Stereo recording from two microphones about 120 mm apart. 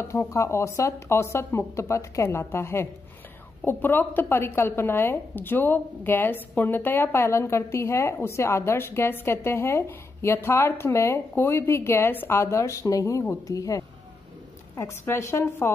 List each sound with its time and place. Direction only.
0.0 s speech: 25° left (ahead or behind)